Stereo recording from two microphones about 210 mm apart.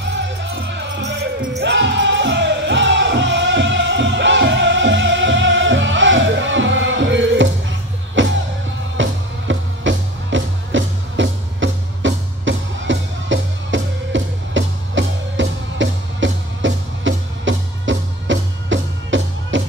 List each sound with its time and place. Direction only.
0.0 s music: 55° right (ahead or behind)